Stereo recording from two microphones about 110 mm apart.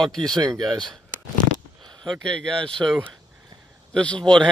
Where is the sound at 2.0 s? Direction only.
5° left (ahead or behind).